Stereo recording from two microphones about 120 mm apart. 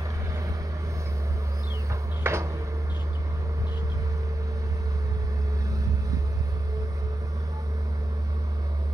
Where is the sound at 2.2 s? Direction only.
20° right (ahead or behind).